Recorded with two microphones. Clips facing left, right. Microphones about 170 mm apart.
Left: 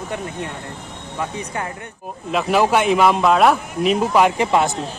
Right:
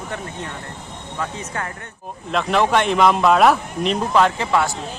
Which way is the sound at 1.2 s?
15° left (ahead or behind).